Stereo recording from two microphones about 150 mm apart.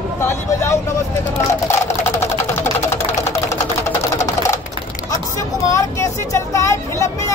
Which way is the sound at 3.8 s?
20° left (ahead or behind).